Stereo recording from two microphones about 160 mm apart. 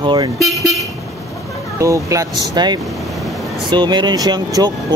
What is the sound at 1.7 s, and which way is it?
Speech, 20° right (ahead or behind).